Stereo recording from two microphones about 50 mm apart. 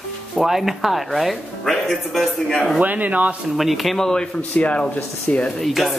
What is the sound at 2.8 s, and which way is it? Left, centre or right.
Speech, right.